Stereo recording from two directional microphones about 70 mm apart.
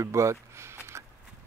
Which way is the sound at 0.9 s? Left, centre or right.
Right.